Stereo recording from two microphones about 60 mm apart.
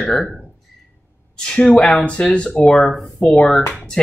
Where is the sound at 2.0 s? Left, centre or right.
Centre.